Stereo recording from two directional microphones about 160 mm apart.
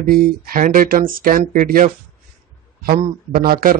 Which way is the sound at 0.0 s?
60° right (ahead or behind).